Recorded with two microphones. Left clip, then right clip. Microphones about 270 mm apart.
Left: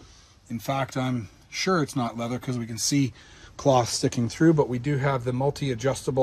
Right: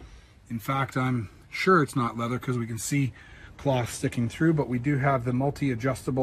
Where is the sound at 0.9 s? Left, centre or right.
Left.